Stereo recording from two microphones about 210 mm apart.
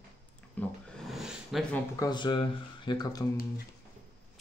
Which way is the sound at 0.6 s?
5° left (ahead or behind).